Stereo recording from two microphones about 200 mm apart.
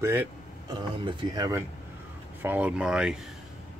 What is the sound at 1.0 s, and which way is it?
Speech, 25° right (ahead or behind).